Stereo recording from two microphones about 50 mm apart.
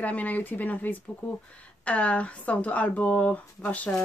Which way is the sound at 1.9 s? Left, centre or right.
Left.